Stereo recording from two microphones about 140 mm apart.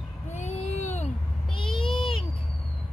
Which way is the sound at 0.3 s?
55° left (ahead or behind).